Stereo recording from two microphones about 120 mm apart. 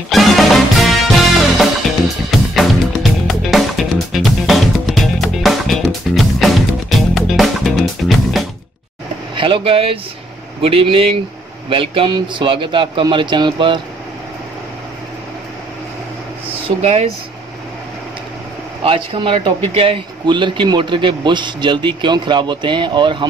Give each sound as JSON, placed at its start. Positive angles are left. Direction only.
{"t": 0.1, "sound": "music", "side_deg": 0}
{"t": 9.3, "sound": "a man's voice", "side_deg": -45}
{"t": 16.8, "sound": "speech", "side_deg": -60}
{"t": 18.9, "sound": "a man's voice", "side_deg": -50}